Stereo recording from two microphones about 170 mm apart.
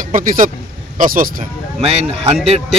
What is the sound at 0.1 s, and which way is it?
Speech, 50° right (ahead or behind).